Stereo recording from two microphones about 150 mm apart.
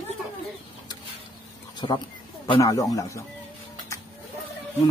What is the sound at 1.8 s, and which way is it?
Speech, 30° left (ahead or behind).